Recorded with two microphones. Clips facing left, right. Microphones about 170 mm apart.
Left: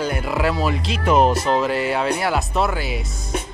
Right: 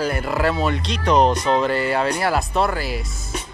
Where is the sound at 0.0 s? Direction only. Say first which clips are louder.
Right 1 dB; centre (ahead or behind).